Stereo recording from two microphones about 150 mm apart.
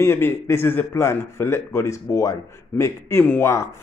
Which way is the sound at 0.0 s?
15° left (ahead or behind).